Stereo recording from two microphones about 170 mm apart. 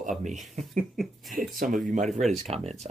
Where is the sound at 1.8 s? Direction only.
45° right (ahead or behind).